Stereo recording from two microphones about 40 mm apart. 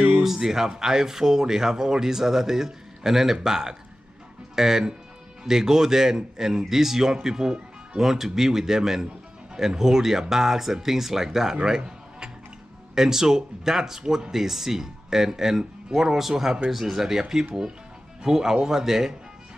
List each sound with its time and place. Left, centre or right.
0.2 s speech: centre
11.6 s a sound: centre
12.9 s speech: centre